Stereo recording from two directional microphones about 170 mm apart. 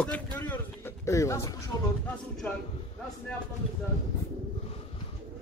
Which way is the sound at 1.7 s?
15° left (ahead or behind).